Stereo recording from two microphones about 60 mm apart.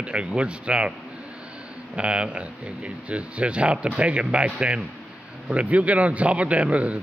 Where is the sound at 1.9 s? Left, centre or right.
Centre.